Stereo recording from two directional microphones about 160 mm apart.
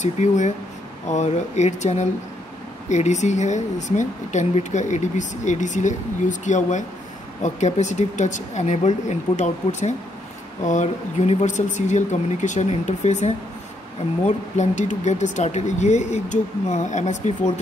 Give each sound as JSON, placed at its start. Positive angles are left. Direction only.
{"t": 0.0, "sound": "speech", "side_deg": 50}